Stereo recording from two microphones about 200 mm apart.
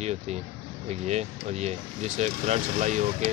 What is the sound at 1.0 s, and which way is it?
Speech, 35° right (ahead or behind).